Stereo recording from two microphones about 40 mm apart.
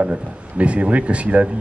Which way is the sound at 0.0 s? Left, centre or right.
Right.